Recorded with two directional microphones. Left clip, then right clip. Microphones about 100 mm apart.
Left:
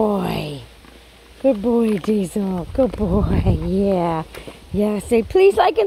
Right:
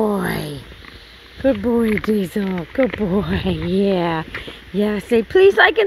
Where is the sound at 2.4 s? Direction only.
15° left (ahead or behind).